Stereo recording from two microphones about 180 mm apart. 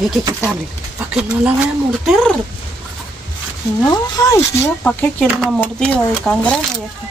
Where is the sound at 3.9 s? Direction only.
20° left (ahead or behind).